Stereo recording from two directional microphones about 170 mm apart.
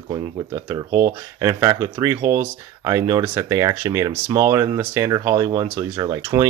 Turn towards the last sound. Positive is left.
turn(degrees=-25)  # may be behind; listen again after turning